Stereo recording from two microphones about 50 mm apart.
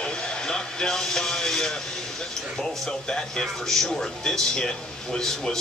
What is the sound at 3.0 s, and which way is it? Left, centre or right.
Speech, centre.